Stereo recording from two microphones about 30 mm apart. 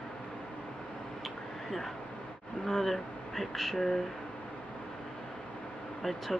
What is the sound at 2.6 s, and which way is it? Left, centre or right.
Speech, centre.